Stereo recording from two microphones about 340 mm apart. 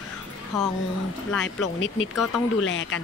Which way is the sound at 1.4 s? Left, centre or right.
Left.